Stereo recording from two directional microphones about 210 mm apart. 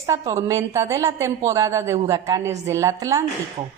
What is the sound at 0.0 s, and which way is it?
A woman's voice, 15° right (ahead or behind).